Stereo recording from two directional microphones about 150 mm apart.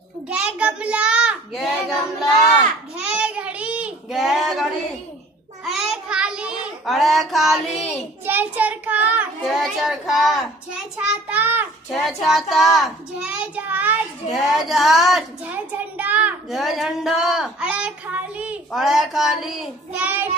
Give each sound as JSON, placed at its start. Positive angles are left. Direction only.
{"t": 0.3, "sound": "a child's voice", "side_deg": -10}
{"t": 3.0, "sound": "child singing", "side_deg": -10}
{"t": 5.7, "sound": "child singing", "side_deg": -5}
{"t": 7.9, "sound": "child singing", "side_deg": -10}
{"t": 9.6, "sound": "a child's voice", "side_deg": 0}
{"t": 11.9, "sound": "a child's voice", "side_deg": 0}
{"t": 14.3, "sound": "a child's voice", "side_deg": 0}